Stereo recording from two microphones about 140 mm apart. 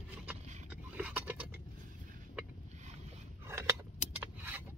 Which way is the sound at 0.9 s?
10° right (ahead or behind).